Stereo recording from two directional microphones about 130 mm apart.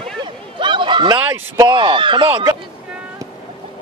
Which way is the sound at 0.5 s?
40° right (ahead or behind).